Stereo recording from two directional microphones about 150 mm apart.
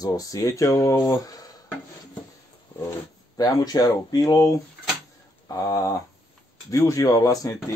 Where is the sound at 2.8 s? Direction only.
25° left (ahead or behind).